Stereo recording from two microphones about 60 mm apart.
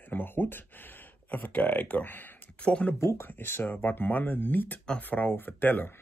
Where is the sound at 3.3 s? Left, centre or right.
Left.